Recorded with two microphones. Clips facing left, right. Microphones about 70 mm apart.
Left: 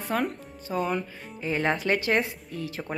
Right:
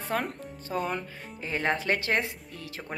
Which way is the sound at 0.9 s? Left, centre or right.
Right.